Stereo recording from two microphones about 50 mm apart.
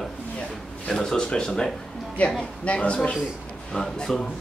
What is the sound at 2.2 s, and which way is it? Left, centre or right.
Speech, left.